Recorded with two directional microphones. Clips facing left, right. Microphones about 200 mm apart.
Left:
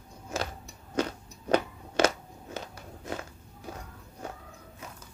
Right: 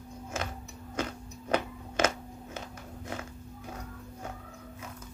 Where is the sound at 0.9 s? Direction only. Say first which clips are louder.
Left 4 dB; 35° left (ahead or behind).